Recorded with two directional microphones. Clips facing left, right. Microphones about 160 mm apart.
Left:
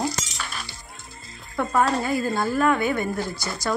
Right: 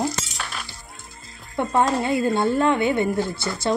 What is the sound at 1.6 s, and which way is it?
A woman's voice, 25° right (ahead or behind).